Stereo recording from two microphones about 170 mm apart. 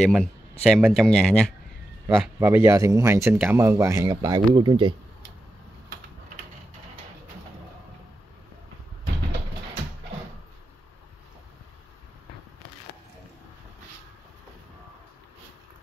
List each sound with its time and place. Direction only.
0.0 s speech: centre (ahead or behind); by 4.9 s 30° right (ahead or behind)